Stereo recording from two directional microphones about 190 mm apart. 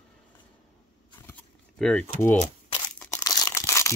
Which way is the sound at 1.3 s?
5° left (ahead or behind).